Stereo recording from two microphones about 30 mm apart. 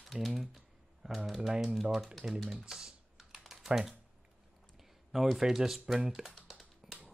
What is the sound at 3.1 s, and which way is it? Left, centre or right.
Typing, centre.